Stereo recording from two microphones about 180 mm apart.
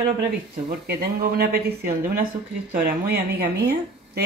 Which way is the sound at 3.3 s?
65° right (ahead or behind).